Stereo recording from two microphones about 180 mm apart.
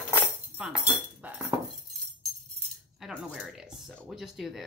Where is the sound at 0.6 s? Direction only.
5° right (ahead or behind).